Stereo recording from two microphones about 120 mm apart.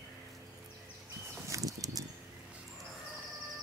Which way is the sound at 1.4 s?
30° right (ahead or behind).